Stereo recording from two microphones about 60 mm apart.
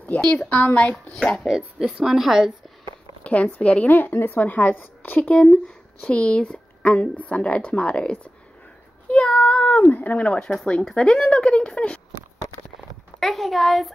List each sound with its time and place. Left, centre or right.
0.5 s a woman's voice: left
1.1 s speech: centre
1.5 s speech: centre
3.3 s speech: left
6.0 s speech: centre
9.1 s a sound: centre
9.9 s speech: left
13.2 s speech: centre